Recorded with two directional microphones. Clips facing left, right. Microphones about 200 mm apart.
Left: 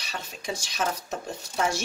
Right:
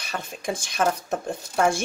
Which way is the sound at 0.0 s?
55° right (ahead or behind).